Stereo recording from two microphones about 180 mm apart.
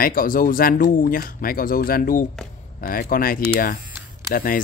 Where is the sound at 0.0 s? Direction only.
50° left (ahead or behind).